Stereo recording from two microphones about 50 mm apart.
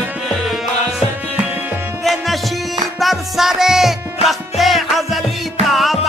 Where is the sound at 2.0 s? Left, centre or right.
Centre.